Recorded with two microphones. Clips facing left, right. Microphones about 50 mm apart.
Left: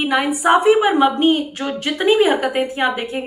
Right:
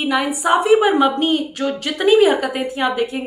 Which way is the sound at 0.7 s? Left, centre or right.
Centre.